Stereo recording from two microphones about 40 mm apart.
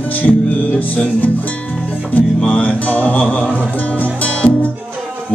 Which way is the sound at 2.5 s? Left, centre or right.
Left.